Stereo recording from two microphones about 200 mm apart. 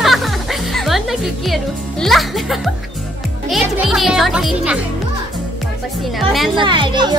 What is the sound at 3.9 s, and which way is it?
Speech, centre (ahead or behind).